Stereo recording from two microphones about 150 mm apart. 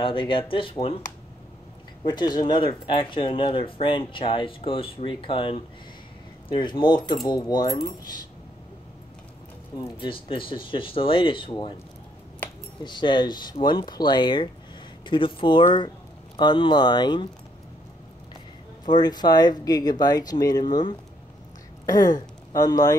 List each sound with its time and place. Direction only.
0.0 s speech: 35° left (ahead or behind)
2.0 s speech: 30° left (ahead or behind)
9.9 s speech: 35° left (ahead or behind)
12.8 s speech: 30° left (ahead or behind)
18.9 s speech: 30° left (ahead or behind)
22.5 s speech: 25° left (ahead or behind)